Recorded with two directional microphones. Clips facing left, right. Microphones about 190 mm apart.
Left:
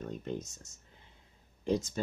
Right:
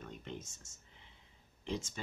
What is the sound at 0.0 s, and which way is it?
Speech, 40° left (ahead or behind).